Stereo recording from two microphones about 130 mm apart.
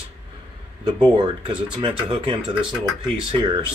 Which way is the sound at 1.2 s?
35° right (ahead or behind).